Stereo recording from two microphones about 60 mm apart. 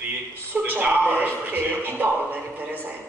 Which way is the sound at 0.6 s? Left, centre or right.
Right.